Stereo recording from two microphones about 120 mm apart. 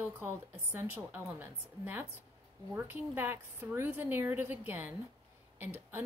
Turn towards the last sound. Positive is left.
turn(degrees=-20)  # may be behind; listen again after turning